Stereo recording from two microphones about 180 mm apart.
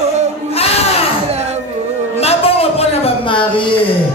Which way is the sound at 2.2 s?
35° left (ahead or behind).